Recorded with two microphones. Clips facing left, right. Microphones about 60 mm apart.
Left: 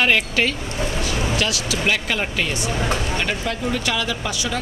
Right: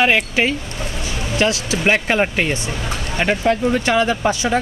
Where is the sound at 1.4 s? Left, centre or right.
Right.